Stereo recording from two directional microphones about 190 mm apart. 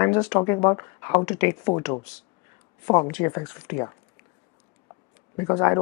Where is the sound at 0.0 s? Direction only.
20° left (ahead or behind).